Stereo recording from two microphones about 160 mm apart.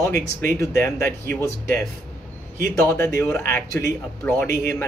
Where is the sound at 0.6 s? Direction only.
15° left (ahead or behind).